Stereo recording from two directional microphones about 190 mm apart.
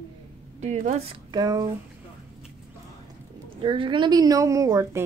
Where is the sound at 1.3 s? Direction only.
20° right (ahead or behind).